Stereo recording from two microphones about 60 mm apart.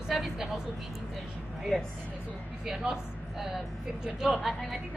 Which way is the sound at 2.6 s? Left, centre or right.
Centre.